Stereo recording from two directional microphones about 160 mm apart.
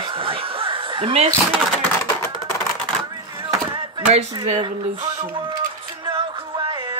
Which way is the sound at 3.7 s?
40° right (ahead or behind).